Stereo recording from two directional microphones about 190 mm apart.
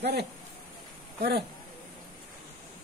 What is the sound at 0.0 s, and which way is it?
Speech, 60° right (ahead or behind).